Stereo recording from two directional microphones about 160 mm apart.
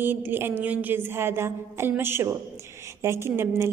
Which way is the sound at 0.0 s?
15° right (ahead or behind).